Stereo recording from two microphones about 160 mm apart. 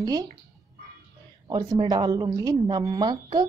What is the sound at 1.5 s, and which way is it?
A woman's voice, 25° right (ahead or behind).